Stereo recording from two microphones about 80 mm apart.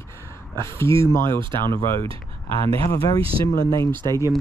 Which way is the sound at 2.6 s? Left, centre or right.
Left.